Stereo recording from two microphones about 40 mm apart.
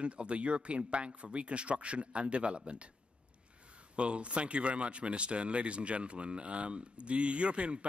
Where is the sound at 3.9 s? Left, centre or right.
Right.